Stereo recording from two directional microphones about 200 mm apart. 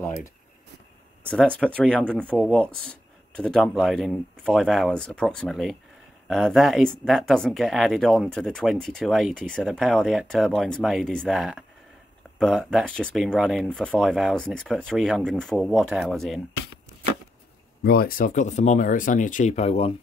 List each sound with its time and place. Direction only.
1.2 s speech: 5° left (ahead or behind)
17.8 s speech: 45° left (ahead or behind); by 19.9 s 30° left (ahead or behind)